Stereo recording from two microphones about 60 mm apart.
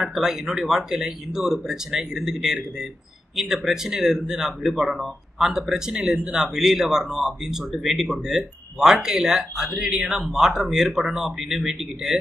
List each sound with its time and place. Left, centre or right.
0.0 s a man's voice: centre